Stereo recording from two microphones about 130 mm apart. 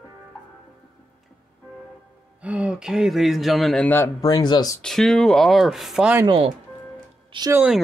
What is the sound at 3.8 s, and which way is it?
Speech, 15° left (ahead or behind).